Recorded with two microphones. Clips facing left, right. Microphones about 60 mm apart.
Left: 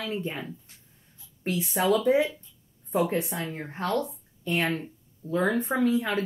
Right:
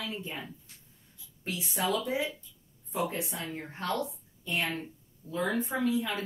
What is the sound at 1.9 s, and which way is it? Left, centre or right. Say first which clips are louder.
A woman's voice: left 11 dB; left.